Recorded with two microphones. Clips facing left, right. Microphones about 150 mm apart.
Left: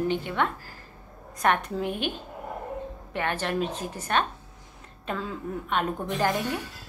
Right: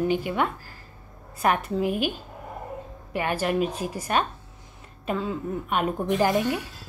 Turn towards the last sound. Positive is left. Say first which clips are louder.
# right 4 dB
turn(degrees=-10)  # may be behind; listen again after turning